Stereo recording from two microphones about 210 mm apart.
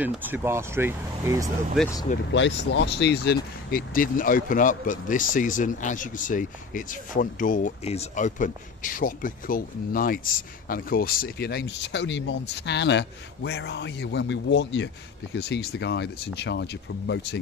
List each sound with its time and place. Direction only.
0.0 s speech: 10° right (ahead or behind)
2.3 s speech: 60° left (ahead or behind)